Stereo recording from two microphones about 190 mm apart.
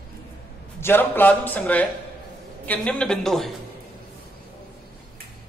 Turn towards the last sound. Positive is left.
turn(degrees=0)  # may be behind; listen again after turning